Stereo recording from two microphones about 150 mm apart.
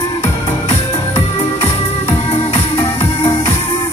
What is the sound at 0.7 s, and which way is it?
Music, 40° left (ahead or behind).